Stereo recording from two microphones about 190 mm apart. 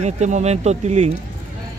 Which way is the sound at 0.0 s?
35° right (ahead or behind).